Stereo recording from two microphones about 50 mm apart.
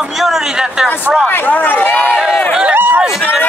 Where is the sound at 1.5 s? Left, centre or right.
Left.